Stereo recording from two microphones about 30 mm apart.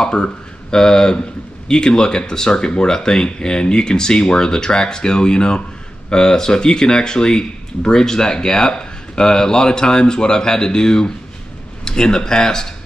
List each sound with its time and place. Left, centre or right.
0.0 s speech: left